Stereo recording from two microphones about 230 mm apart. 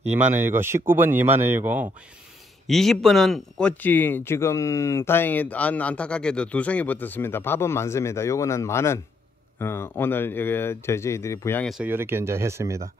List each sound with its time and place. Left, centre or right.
0.1 s speech: centre